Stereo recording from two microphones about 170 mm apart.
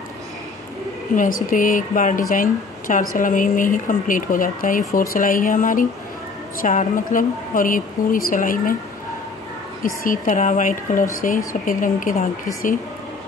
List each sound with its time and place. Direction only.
1.1 s speech: 50° left (ahead or behind)
9.8 s speech: 50° left (ahead or behind)